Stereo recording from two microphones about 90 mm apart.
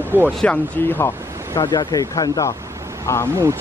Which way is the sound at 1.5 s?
45° left (ahead or behind).